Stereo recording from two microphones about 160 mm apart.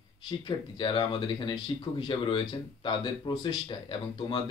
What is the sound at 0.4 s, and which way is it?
Speech, 30° left (ahead or behind).